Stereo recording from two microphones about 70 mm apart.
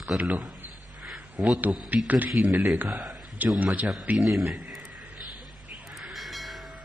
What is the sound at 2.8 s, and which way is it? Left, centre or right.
Speech, centre.